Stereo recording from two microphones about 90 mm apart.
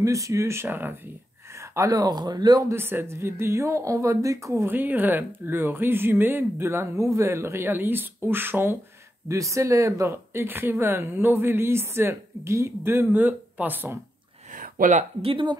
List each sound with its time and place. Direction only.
0.0 s speech: 35° right (ahead or behind)
1.5 s a sound: 30° right (ahead or behind)
1.9 s speech: 45° right (ahead or behind)
2.7 s speech: 25° right (ahead or behind)
4.6 s speech: 20° right (ahead or behind)
9.3 s speech: 35° right (ahead or behind)
15.2 s speech: 70° right (ahead or behind)